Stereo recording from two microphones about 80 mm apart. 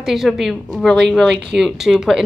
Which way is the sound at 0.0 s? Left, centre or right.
Centre.